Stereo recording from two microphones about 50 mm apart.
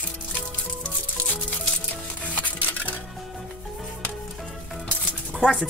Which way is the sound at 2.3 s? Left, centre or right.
Left.